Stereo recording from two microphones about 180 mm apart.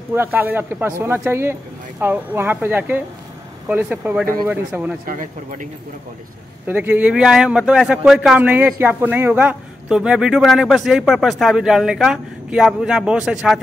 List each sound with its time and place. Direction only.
0.1 s speech: 10° right (ahead or behind)
5.0 s speech: 45° right (ahead or behind)
6.7 s a man's voice: 10° right (ahead or behind)